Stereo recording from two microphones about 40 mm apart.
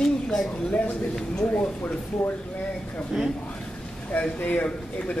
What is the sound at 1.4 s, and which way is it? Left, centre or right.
Speech, left.